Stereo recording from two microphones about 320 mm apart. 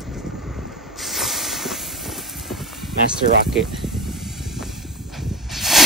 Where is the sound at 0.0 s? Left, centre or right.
Centre.